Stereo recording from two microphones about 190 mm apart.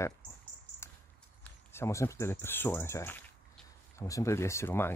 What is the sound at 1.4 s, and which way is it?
Speech, 15° left (ahead or behind).